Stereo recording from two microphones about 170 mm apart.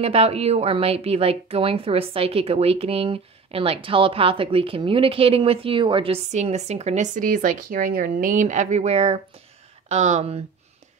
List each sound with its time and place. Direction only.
0.0 s a woman's voice: 35° right (ahead or behind)